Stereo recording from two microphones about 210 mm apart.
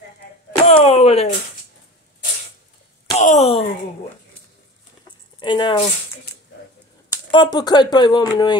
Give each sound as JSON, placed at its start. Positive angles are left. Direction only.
{"t": 0.7, "sound": "speech", "side_deg": 25}
{"t": 3.2, "sound": "a sound", "side_deg": 35}
{"t": 5.4, "sound": "speech", "side_deg": 20}
{"t": 7.1, "sound": "speech", "side_deg": 20}